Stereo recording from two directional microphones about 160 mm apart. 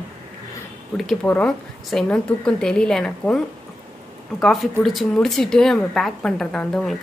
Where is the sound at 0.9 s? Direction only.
Centre (ahead or behind).